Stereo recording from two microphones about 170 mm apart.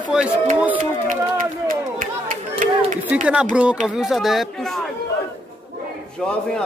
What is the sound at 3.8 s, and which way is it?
Speech, 5° right (ahead or behind).